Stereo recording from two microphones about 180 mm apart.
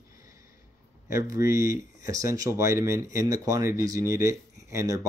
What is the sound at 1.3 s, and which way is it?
Speech, 15° right (ahead or behind).